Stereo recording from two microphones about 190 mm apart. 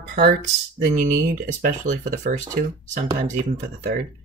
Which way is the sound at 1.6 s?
40° right (ahead or behind).